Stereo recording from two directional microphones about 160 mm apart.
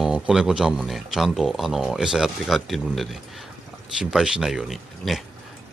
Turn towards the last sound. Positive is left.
turn(degrees=0)  # may be behind; listen again after turning